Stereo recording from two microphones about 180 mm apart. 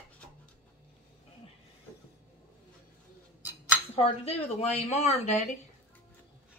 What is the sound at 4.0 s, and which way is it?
Speech, 35° left (ahead or behind).